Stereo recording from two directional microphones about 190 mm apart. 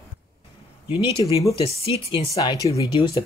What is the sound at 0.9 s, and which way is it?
Speech, 30° left (ahead or behind).